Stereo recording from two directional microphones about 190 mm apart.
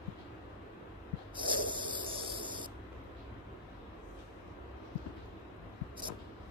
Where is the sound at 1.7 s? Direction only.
25° right (ahead or behind).